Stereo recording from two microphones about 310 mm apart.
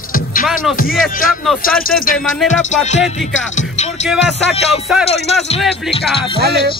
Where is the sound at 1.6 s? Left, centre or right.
Left.